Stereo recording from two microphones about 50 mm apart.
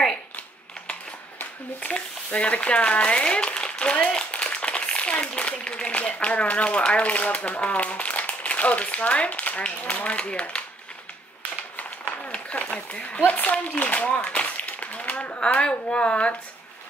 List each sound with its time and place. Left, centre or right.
1.8 s speech: left
12.3 s speech: left